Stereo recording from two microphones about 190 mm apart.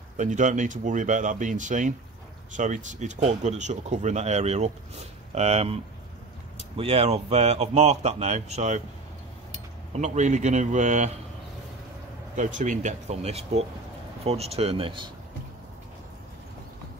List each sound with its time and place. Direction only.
0.2 s speech: 40° right (ahead or behind)
6.8 s speech: 30° right (ahead or behind)
9.9 s speech: 40° right (ahead or behind)
12.4 s speech: 40° right (ahead or behind)